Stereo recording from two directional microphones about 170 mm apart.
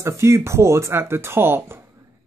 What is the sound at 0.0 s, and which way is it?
Speech, 15° right (ahead or behind).